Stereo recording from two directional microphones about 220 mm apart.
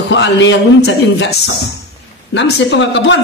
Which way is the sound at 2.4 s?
55° left (ahead or behind).